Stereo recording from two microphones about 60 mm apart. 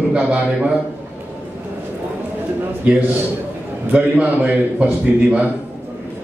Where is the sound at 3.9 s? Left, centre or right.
Right.